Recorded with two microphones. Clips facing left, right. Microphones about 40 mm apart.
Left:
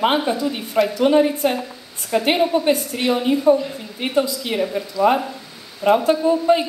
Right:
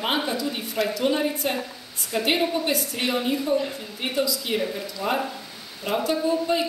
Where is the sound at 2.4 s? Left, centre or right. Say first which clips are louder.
Left 6 dB; left.